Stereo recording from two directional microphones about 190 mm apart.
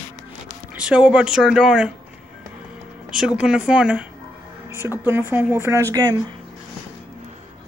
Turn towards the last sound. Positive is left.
turn(degrees=-20)  # may be behind; listen again after turning